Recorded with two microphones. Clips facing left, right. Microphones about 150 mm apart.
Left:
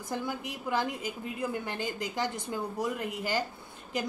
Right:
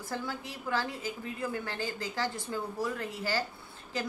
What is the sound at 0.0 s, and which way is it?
A woman's voice, 15° left (ahead or behind).